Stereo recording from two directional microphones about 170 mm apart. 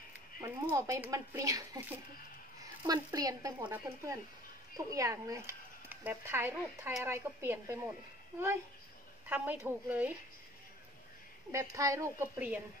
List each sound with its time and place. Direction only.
0.7 s speech: 20° right (ahead or behind)
9.3 s speech: 10° right (ahead or behind)
11.5 s speech: 20° right (ahead or behind)